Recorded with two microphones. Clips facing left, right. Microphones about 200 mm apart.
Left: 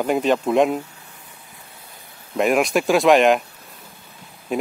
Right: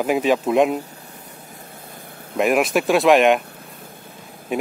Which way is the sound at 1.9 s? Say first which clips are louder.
Right 1 dB; 55° right (ahead or behind).